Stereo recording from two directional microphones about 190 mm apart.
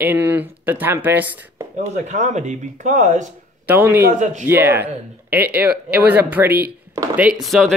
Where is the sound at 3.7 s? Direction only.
10° right (ahead or behind).